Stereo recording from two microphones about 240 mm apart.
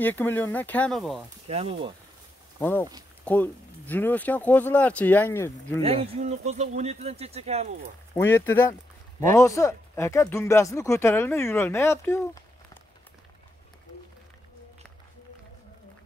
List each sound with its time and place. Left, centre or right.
0.0 s speech: centre
1.5 s speech: right
2.6 s speech: centre
5.8 s speech: right
8.1 s speech: centre